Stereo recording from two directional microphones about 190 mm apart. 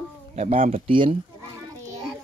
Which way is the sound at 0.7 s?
30° right (ahead or behind).